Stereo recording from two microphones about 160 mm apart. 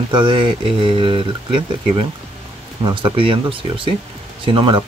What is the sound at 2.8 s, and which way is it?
Speech, 35° right (ahead or behind).